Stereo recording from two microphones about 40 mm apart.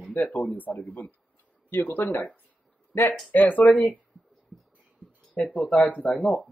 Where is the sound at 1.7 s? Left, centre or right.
Left.